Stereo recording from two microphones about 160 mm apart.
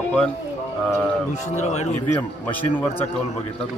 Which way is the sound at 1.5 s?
45° left (ahead or behind).